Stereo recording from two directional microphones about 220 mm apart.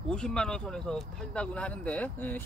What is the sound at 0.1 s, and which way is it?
Speech, 5° left (ahead or behind).